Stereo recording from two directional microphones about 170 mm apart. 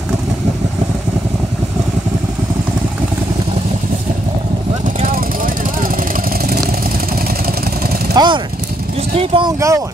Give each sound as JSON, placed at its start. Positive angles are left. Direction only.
{"t": 5.0, "sound": "vehicle", "side_deg": -55}
{"t": 8.1, "sound": "vehicle", "side_deg": -25}
{"t": 9.1, "sound": "speech", "side_deg": -35}
{"t": 9.6, "sound": "speech", "side_deg": -20}